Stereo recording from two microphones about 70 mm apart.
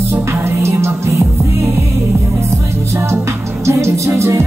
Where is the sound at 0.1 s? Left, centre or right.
Right.